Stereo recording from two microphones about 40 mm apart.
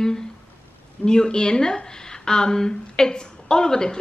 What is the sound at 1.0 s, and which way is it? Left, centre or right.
A woman's voice, centre.